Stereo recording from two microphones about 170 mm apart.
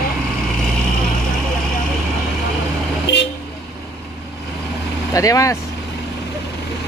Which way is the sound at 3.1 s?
80° left.